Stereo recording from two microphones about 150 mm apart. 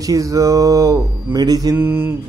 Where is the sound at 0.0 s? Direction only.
20° right (ahead or behind).